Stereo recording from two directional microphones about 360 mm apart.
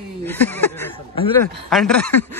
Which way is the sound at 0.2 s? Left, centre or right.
Centre.